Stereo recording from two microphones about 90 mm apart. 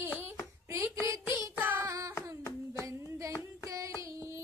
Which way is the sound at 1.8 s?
35° right (ahead or behind).